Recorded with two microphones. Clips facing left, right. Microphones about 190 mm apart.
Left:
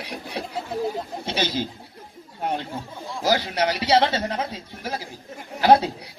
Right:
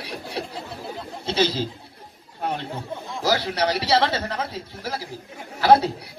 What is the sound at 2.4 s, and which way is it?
Speech, 15° left (ahead or behind).